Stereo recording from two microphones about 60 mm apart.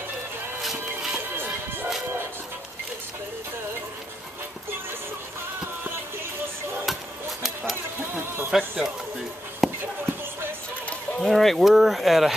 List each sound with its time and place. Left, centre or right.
0.6 s music: centre
1.3 s music: right
6.9 s music: centre
8.5 s speech: centre
9.6 s a sound: centre
11.1 s speech: centre